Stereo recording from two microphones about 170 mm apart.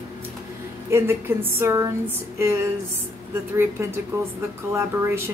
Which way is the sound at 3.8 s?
15° right (ahead or behind).